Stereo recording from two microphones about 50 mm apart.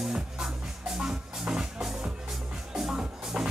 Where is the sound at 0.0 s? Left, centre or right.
Centre.